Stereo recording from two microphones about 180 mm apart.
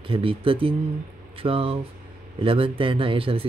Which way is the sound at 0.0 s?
30° right (ahead or behind).